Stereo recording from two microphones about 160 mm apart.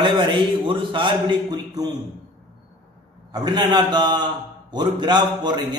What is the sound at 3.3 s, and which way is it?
A man's voice, 25° right (ahead or behind).